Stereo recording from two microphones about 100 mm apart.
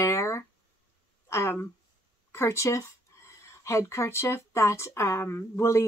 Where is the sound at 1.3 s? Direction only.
25° left (ahead or behind).